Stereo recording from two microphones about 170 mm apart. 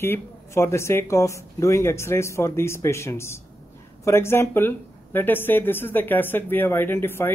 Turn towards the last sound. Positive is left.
turn(degrees=15)  # may be behind; listen again after turning